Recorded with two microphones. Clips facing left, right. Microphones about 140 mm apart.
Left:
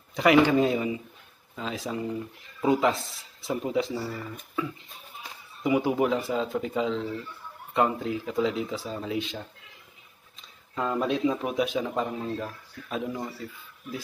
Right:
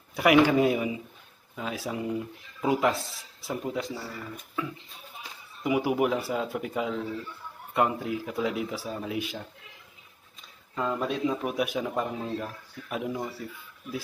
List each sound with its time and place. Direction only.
0.1 s speech: 10° right (ahead or behind)
5.6 s speech: 10° right (ahead or behind)
10.7 s speech: centre (ahead or behind)